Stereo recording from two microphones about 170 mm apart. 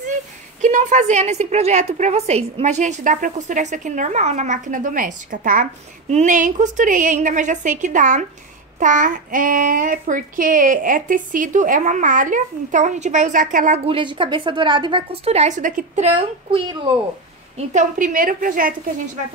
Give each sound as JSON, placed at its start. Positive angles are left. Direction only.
{"t": 0.6, "sound": "a woman's voice", "side_deg": -45}
{"t": 13.8, "sound": "a woman's voice", "side_deg": -30}
{"t": 16.4, "sound": "a woman's voice", "side_deg": -30}
{"t": 17.6, "sound": "a woman's voice", "side_deg": -50}